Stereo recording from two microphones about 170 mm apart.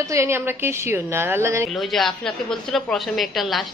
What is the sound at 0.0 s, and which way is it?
A woman's voice, 15° right (ahead or behind).